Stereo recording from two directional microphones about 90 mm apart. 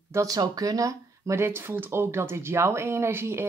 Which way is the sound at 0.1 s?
40° right (ahead or behind).